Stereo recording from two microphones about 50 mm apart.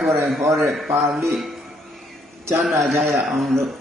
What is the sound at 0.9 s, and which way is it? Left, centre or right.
Speech, centre.